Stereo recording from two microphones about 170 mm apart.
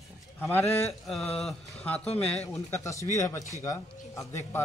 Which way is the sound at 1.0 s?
Centre (ahead or behind).